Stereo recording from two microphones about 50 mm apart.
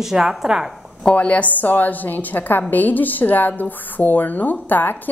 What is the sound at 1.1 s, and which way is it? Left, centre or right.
A woman's voice, left.